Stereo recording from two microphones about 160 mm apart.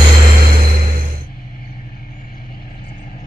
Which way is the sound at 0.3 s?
60° right (ahead or behind).